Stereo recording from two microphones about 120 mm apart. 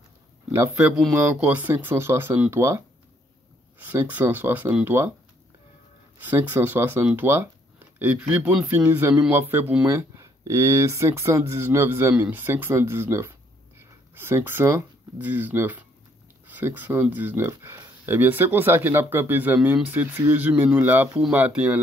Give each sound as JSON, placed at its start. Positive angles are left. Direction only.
{"t": 0.7, "sound": "speech", "side_deg": -10}
{"t": 3.8, "sound": "speech", "side_deg": -20}
{"t": 6.2, "sound": "speech", "side_deg": -15}